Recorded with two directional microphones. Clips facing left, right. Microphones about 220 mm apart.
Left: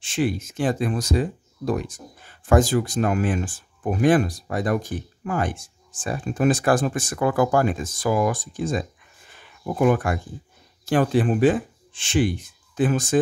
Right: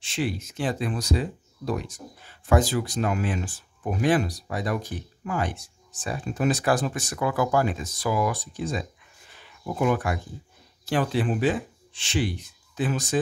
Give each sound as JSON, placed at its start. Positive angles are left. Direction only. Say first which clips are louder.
{"t": 0.0, "sound": "speech", "louder": "left 5 dB", "side_deg": 50}